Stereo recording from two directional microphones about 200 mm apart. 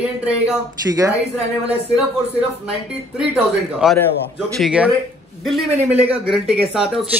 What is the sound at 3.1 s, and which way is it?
Speech, 5° right (ahead or behind).